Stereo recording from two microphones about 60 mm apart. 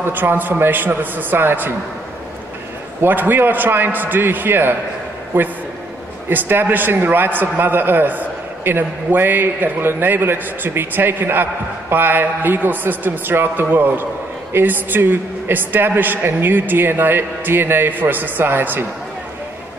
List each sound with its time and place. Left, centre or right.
0.0 s a man's voice: right
3.0 s a man's voice: right